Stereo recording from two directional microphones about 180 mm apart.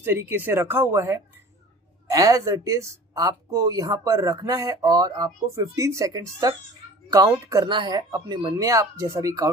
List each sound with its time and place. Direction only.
0.0 s speech: 15° right (ahead or behind)